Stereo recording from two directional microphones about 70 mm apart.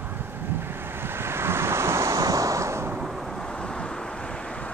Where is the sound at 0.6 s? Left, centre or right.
Right.